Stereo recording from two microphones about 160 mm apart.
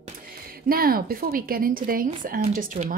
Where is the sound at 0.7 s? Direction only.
65° right (ahead or behind).